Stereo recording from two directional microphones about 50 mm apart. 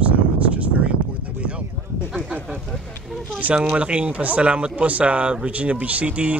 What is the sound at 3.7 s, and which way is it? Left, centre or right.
Speech, right.